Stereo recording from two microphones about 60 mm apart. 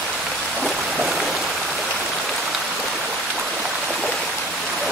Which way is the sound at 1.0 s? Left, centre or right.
Centre.